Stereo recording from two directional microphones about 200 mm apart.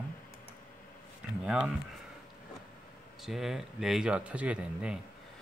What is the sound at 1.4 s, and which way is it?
Speech, 5° right (ahead or behind).